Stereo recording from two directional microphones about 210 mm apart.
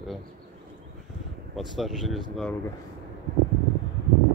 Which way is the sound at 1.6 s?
Centre (ahead or behind).